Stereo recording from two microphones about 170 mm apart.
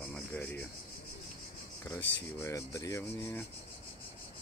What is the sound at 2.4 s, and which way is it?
Cricket, 20° left (ahead or behind).